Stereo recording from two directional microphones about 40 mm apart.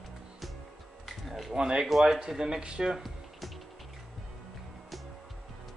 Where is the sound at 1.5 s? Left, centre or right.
Right.